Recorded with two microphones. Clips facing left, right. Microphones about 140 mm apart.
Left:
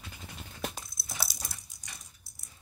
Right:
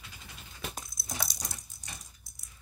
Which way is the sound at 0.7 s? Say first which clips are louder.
Right 2 dB; centre (ahead or behind).